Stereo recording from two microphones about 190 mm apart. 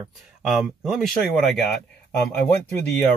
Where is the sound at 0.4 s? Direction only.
5° right (ahead or behind).